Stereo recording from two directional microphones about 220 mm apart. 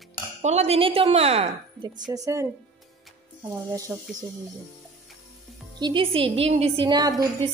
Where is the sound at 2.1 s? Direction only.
15° right (ahead or behind).